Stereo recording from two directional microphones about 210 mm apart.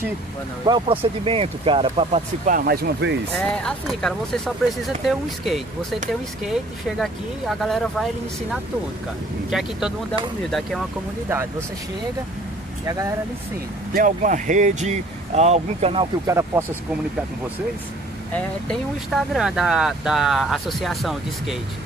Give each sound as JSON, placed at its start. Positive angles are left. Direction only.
{"t": 0.7, "sound": "speech", "side_deg": -25}
{"t": 2.4, "sound": "speech", "side_deg": -45}
{"t": 3.3, "sound": "speech", "side_deg": 5}
{"t": 12.8, "sound": "speech", "side_deg": -15}
{"t": 13.9, "sound": "speech", "side_deg": -40}
{"t": 16.3, "sound": "speech", "side_deg": -10}
{"t": 18.3, "sound": "speech", "side_deg": 0}